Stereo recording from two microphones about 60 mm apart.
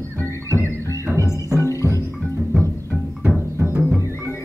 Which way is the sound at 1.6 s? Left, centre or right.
Left.